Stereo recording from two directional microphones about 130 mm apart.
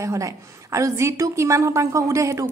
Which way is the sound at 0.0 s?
25° right (ahead or behind).